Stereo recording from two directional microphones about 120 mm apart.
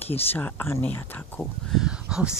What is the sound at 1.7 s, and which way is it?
Speech, 5° right (ahead or behind).